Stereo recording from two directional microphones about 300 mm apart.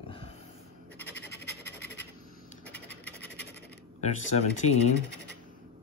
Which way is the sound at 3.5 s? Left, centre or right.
Left.